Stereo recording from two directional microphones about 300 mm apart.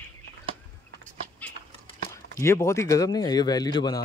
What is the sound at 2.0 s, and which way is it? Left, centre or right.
A man's voice, centre.